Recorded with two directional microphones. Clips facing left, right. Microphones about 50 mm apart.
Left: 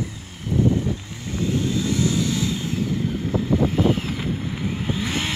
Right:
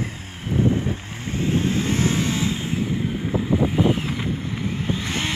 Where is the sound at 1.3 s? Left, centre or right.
Right.